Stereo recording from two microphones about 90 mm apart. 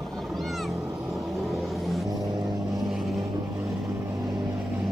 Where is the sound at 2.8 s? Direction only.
5° right (ahead or behind).